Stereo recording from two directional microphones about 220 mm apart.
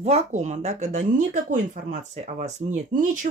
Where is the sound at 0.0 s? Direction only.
30° right (ahead or behind).